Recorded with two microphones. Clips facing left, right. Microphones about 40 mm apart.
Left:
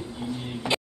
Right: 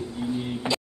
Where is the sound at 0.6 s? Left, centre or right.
Right.